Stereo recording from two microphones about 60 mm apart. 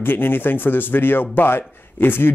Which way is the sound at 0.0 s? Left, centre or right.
Left.